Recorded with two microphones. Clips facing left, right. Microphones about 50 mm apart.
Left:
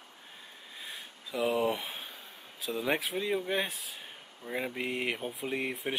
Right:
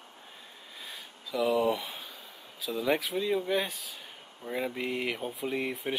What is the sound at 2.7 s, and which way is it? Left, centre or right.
Speech, left.